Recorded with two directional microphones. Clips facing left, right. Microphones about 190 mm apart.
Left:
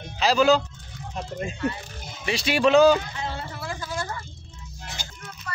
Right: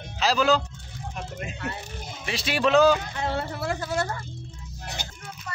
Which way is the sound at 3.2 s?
60° right (ahead or behind).